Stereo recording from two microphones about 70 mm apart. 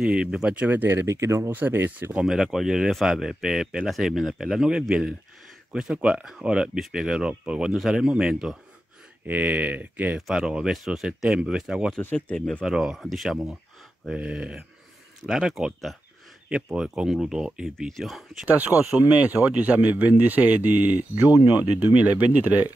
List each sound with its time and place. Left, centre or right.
0.0 s speech: centre
0.6 s a man's voice: right
0.8 s speech: right
1.5 s a man's voice: right
2.2 s speech: centre
7.7 s speech: centre
9.2 s a man's voice: right
10.1 s speech: centre
12.0 s speech: left
12.4 s speech: centre
12.6 s speech: centre
14.1 s speech: centre
16.4 s speech: centre
18.4 s a man's voice: right